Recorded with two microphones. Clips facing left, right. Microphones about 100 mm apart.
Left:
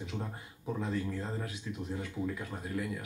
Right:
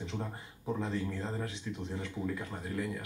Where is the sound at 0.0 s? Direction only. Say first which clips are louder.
Right 1 dB; 5° left (ahead or behind).